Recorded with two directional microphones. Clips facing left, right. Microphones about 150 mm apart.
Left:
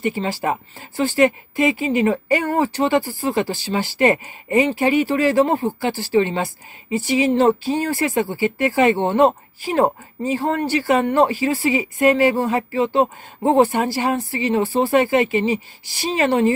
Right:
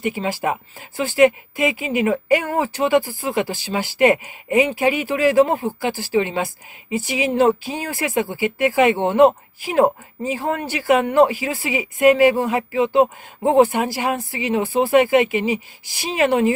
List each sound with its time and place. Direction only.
0.0 s speech: 10° right (ahead or behind)